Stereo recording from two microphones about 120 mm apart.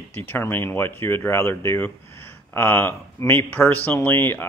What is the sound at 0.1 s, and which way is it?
Speech, 15° left (ahead or behind).